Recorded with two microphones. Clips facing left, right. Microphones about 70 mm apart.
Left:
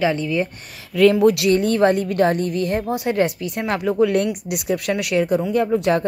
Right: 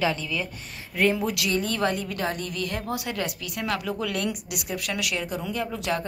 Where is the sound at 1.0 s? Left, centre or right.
Left.